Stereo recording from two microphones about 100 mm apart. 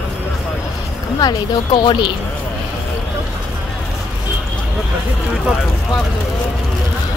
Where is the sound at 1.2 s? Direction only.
40° left (ahead or behind).